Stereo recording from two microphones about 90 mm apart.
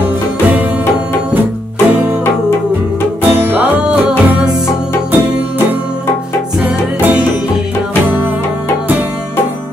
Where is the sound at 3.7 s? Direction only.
10° right (ahead or behind).